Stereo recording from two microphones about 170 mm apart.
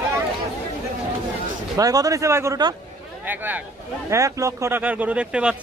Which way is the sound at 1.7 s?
20° right (ahead or behind).